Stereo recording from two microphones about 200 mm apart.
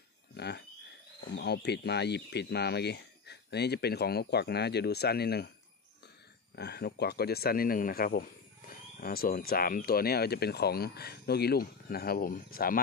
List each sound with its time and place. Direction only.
0.4 s speech: 55° left (ahead or behind)
6.5 s speech: 55° left (ahead or behind)